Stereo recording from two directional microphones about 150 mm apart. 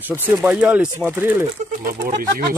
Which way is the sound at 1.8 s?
70° right (ahead or behind).